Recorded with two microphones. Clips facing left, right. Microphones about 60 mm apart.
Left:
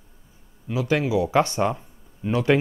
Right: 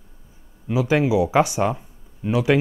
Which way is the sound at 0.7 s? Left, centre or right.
Centre.